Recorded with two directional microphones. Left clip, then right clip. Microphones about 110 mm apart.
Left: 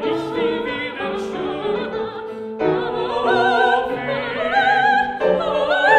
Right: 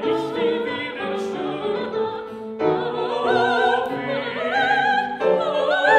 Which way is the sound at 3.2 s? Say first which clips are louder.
Left 3 dB; 15° left (ahead or behind).